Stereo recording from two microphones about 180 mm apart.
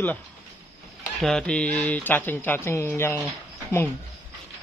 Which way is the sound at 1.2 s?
5° left (ahead or behind).